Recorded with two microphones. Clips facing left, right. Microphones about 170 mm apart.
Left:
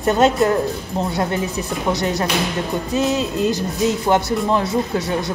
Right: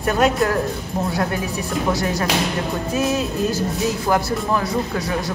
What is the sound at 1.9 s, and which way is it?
Speech, 20° left (ahead or behind).